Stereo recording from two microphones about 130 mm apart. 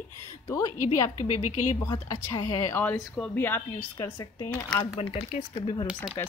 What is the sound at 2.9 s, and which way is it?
Speech, 5° left (ahead or behind).